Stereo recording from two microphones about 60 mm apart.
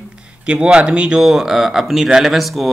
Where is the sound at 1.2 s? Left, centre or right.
Centre.